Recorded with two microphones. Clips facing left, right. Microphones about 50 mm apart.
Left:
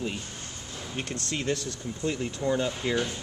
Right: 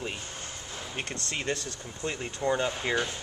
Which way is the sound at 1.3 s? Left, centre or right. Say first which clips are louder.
Left 3 dB; centre.